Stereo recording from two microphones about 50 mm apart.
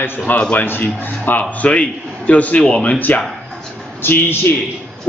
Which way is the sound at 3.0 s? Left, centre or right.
Left.